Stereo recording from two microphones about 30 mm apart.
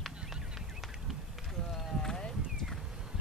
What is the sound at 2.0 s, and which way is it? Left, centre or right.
Clip-clop, centre.